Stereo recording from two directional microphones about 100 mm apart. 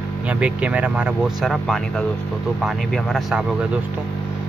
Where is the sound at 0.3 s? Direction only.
15° right (ahead or behind).